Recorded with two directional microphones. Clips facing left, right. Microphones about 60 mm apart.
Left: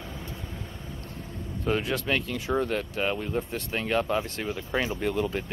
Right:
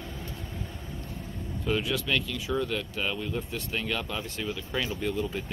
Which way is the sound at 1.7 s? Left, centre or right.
Left.